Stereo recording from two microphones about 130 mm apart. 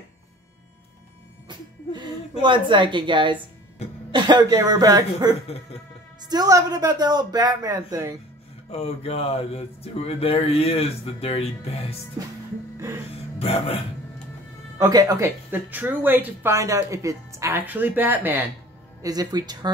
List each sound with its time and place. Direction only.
2.4 s speech: 40° right (ahead or behind)
8.6 s speech: 50° left (ahead or behind)
13.4 s speech: 50° left (ahead or behind)
14.8 s speech: 30° right (ahead or behind)
19.0 s speech: 30° right (ahead or behind)